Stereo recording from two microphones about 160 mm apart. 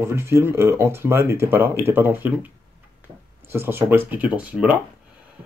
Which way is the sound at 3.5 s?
15° right (ahead or behind).